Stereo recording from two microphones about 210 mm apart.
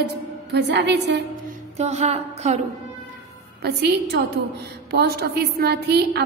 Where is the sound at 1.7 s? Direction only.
30° right (ahead or behind).